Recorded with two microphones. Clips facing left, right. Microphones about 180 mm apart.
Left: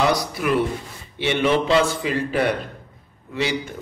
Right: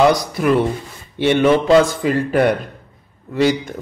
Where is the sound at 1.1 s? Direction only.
50° right (ahead or behind).